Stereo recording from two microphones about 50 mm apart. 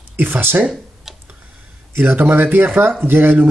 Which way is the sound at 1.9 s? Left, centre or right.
Right.